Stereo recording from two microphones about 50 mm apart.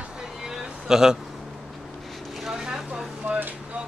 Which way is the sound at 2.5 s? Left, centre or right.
Centre.